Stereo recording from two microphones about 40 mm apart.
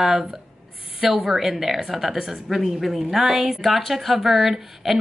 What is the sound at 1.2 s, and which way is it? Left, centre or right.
A woman's voice, centre.